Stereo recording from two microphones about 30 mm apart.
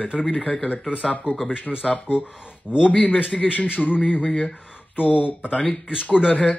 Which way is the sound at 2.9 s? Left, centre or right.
Left.